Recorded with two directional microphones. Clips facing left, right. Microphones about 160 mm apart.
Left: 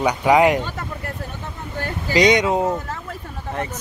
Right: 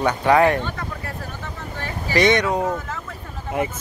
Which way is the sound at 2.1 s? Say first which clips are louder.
Left 2 dB; 20° left (ahead or behind).